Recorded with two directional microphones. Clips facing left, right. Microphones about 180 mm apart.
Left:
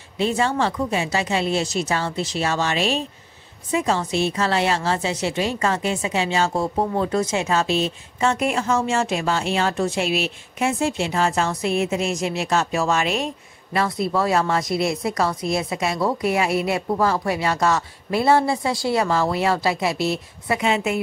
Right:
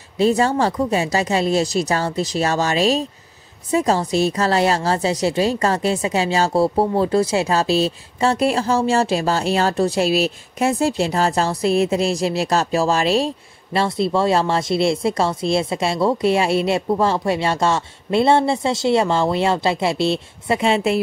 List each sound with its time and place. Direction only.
0.2 s a woman's voice: 40° right (ahead or behind)